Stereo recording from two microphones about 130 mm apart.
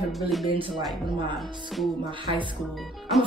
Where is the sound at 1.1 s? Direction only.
35° right (ahead or behind).